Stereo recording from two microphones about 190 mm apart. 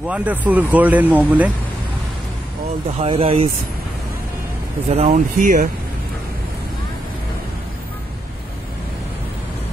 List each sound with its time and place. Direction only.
0.1 s speech: 10° right (ahead or behind)
3.0 s speech: 30° right (ahead or behind)
4.9 s speech: 35° right (ahead or behind)